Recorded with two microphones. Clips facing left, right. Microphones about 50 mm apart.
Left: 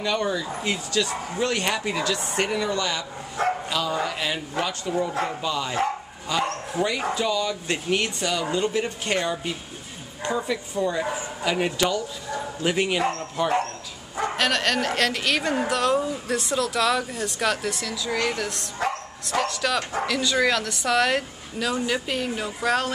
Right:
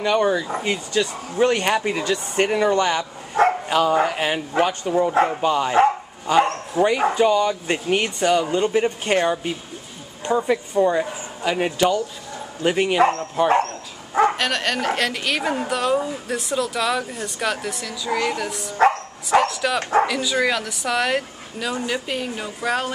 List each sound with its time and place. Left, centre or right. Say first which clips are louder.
0.0 s speech: right 6 dB; right
11.4 s a man's voice: right 4 dB; centre
14.3 s a woman's voice: even; centre
19.8 s speech: right 9 dB; right
20.1 s a woman's voice: right 1 dB; centre